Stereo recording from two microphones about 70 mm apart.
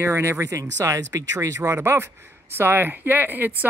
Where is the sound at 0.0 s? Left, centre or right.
Right.